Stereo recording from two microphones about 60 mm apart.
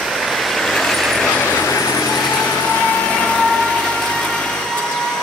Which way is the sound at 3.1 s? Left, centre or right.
Centre.